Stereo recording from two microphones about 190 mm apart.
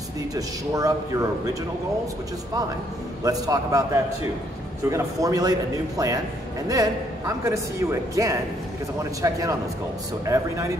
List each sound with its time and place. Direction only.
0.3 s a man's voice: 20° right (ahead or behind)
3.3 s a man's voice: 20° right (ahead or behind)